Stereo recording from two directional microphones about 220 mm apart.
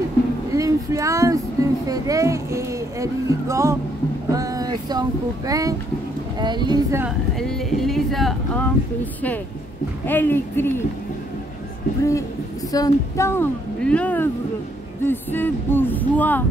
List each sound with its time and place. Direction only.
0.5 s a sound: 15° right (ahead or behind)
4.3 s speech: 15° right (ahead or behind)
7.3 s speech: centre (ahead or behind)
10.0 s speech: 10° left (ahead or behind)
12.0 s speech: 15° left (ahead or behind)